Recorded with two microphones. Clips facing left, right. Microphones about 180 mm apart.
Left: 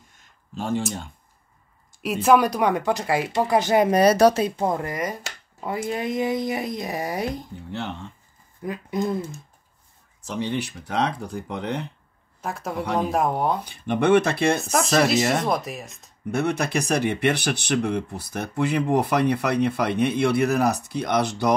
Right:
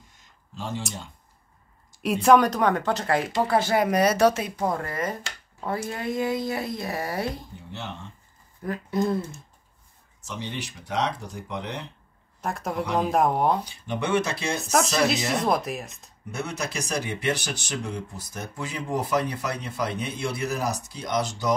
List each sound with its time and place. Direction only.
0.6 s speech: 55° left (ahead or behind)
2.0 s speech: 5° left (ahead or behind); by 3.9 s 20° left (ahead or behind)
3.9 s speech: 35° left (ahead or behind); by 7.4 s 15° left (ahead or behind)
8.6 s speech: 15° left (ahead or behind)
10.2 s speech: 55° left (ahead or behind)
12.4 s a woman's voice: centre (ahead or behind)
13.7 s speech: 55° left (ahead or behind)
14.6 s speech: centre (ahead or behind)
16.3 s speech: 60° left (ahead or behind)